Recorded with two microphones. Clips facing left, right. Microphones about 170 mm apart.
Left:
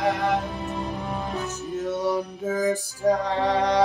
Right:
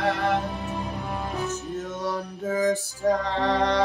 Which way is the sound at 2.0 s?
15° left (ahead or behind).